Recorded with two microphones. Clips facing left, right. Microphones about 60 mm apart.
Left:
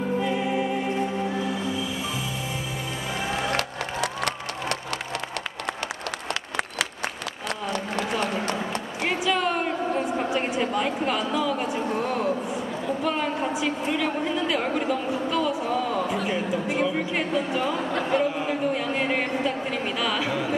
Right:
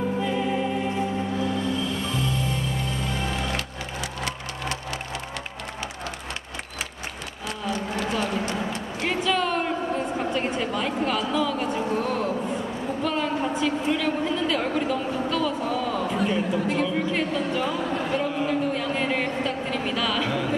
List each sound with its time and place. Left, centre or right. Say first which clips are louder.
0.2 s music: even; centre
3.5 s wood: left 4 dB; left
9.0 s a sound: even; centre